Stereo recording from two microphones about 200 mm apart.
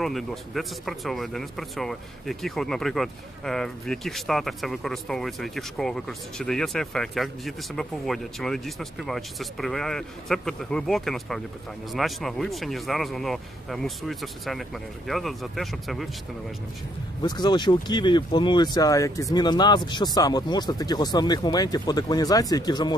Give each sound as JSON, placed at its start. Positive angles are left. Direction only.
{"t": 0.0, "sound": "speech", "side_deg": 0}
{"t": 17.2, "sound": "speech", "side_deg": 20}